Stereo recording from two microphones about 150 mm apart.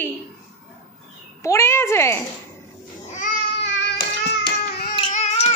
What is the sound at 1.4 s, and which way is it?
Speech, 20° left (ahead or behind).